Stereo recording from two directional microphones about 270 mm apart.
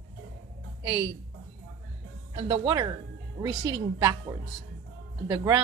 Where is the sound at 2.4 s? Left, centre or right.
Centre.